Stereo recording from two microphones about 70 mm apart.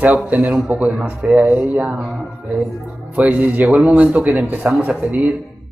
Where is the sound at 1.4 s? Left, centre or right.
Centre.